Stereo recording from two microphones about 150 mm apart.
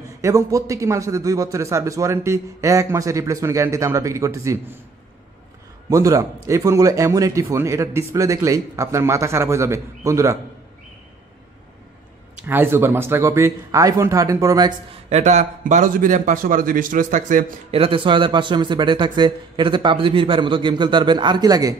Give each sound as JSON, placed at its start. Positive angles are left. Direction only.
{"t": 0.2, "sound": "speech", "side_deg": -20}
{"t": 5.9, "sound": "speech", "side_deg": -20}
{"t": 12.4, "sound": "speech", "side_deg": -15}
{"t": 15.0, "sound": "a man's voice", "side_deg": -45}
{"t": 15.6, "sound": "a man's voice", "side_deg": -60}
{"t": 17.6, "sound": "speech", "side_deg": -40}